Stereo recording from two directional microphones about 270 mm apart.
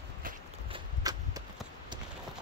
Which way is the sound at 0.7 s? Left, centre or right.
Centre.